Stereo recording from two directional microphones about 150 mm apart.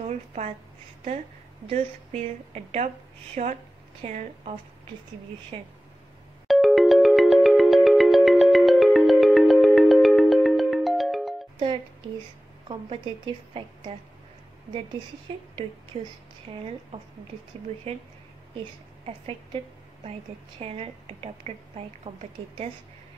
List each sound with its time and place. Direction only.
0.0 s a woman's voice: 50° right (ahead or behind)
1.7 s a woman's voice: 45° right (ahead or behind)
6.4 s ringtone: centre (ahead or behind)
12.6 s a woman's voice: 35° right (ahead or behind)
15.3 s a woman's voice: 40° right (ahead or behind)
16.9 s a woman's voice: 35° right (ahead or behind)
20.5 s a woman's voice: 40° right (ahead or behind)